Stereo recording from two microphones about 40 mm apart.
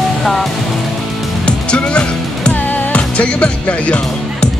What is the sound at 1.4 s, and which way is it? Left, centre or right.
Music, left.